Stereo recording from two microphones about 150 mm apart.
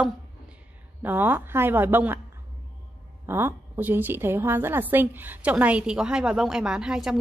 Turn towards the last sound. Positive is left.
turn(degrees=-5)  # may be behind; listen again after turning